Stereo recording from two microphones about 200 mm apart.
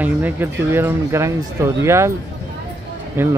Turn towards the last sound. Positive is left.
turn(degrees=-10)  # may be behind; listen again after turning